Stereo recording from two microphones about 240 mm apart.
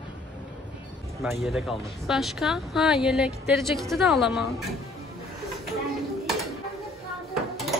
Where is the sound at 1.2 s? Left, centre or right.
Centre.